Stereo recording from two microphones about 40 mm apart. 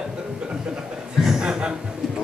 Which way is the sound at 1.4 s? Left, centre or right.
Right.